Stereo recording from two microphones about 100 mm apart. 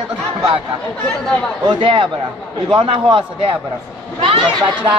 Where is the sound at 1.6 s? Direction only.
60° right (ahead or behind).